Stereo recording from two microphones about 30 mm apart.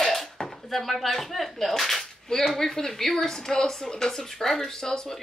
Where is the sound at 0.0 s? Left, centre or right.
Centre.